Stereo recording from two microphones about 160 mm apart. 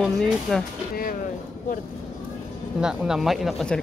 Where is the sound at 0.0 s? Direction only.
5° left (ahead or behind).